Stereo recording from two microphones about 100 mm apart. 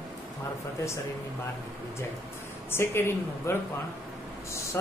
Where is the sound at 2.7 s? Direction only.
25° left (ahead or behind).